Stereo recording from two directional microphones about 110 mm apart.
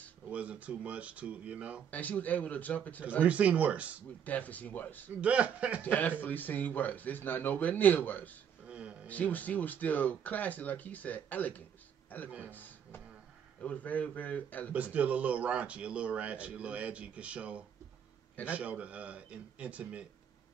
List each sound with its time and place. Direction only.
0.3 s speech: 10° right (ahead or behind)
1.9 s speech: 15° left (ahead or behind)
3.3 s speech: 15° right (ahead or behind)
4.3 s speech: 15° left (ahead or behind)
5.2 s speech: 10° right (ahead or behind)
5.8 s speech: 15° left (ahead or behind)
8.6 s a sound: 10° right (ahead or behind)
9.0 s speech: 15° left (ahead or behind)
12.4 s music: 15° left (ahead or behind)
13.6 s speech: 15° left (ahead or behind)
14.7 s speech: 15° right (ahead or behind)